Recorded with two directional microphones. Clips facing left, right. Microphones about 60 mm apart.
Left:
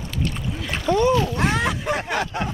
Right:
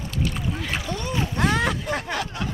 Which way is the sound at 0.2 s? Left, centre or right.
Centre.